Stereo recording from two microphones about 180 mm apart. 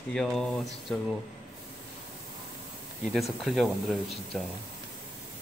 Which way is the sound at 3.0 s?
Centre (ahead or behind).